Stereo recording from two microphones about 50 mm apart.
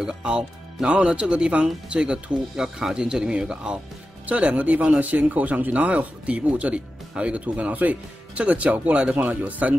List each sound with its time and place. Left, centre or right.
0.0 s speech: centre
4.3 s speech: right